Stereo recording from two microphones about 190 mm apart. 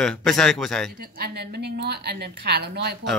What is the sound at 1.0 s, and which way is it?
A woman's voice, 55° right (ahead or behind).